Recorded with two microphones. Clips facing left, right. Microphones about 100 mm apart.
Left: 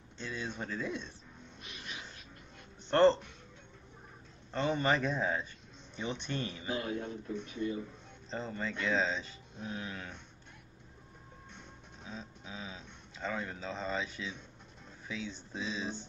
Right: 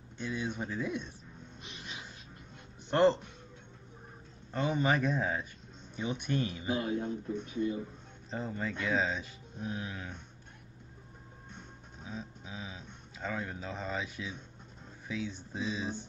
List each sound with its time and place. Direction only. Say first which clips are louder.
0.2 s speech: right 4 dB; 15° right (ahead or behind)
1.6 s a sound: even; 25° right (ahead or behind)
2.9 s speech: left 1 dB; 10° right (ahead or behind)
4.5 s speech: right 1 dB; 10° right (ahead or behind)
8.3 s speech: right 1 dB; 10° right (ahead or behind)
12.0 s a sound: right 3 dB; 10° right (ahead or behind)
15.0 s speech: right 3 dB; 15° right (ahead or behind)